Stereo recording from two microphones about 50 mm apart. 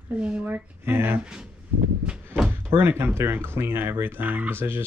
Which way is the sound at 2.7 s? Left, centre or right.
Right.